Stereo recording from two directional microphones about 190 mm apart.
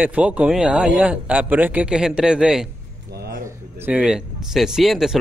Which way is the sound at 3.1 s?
55° right (ahead or behind).